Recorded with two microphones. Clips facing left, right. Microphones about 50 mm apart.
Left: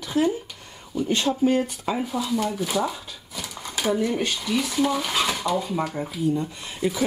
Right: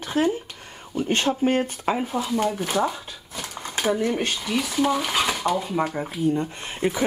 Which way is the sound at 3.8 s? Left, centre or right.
Centre.